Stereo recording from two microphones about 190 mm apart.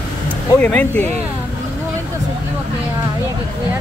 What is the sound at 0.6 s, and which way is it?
Speech, 10° left (ahead or behind).